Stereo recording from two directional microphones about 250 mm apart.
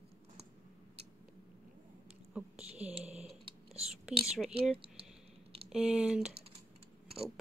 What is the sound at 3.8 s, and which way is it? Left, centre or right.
Whispering, centre.